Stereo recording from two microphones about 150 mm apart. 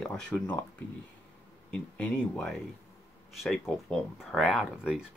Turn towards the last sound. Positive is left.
turn(degrees=-5)  # may be behind; listen again after turning